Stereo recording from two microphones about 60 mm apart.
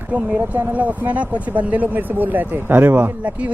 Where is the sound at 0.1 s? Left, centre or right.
Right.